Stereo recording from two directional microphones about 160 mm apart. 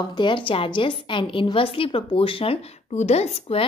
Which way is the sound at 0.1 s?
30° left (ahead or behind).